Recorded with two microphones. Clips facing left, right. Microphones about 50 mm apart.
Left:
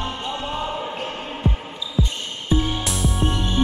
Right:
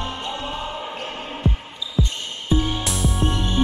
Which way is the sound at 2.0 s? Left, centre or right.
Centre.